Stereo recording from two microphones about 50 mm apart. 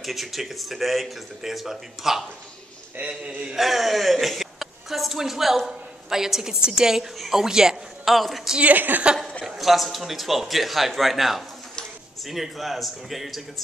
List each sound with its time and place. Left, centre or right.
0.0 s speech: centre
3.0 s a man's voice: right
3.5 s a woman's voice: centre
8.5 s a woman's voice: right
9.4 s speech: centre